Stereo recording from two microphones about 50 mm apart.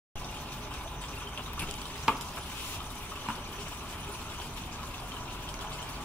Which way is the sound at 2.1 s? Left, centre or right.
Centre.